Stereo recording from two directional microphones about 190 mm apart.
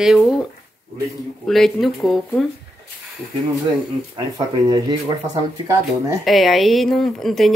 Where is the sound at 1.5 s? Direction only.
Centre (ahead or behind).